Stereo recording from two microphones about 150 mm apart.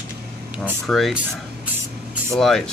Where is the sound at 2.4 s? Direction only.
5° left (ahead or behind).